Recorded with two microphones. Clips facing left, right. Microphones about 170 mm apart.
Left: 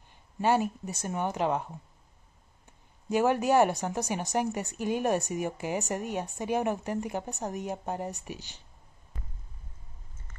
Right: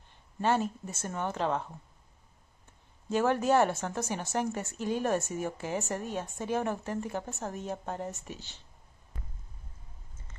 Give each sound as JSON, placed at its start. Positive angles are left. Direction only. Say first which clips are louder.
{"t": 0.4, "sound": "speech", "louder": "left 2 dB", "side_deg": 10}
{"t": 3.1, "sound": "speech", "louder": "left 1 dB", "side_deg": 15}